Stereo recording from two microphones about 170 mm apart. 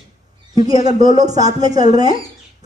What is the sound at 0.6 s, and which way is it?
Speech, 20° right (ahead or behind).